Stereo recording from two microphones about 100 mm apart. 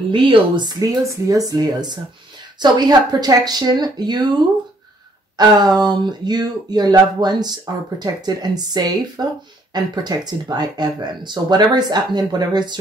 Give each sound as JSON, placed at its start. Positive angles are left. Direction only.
{"t": 0.1, "sound": "speech", "side_deg": -55}
{"t": 1.0, "sound": "speech", "side_deg": -35}
{"t": 5.4, "sound": "speech", "side_deg": -45}